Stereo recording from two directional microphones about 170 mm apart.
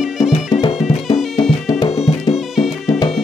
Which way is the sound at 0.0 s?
5° right (ahead or behind).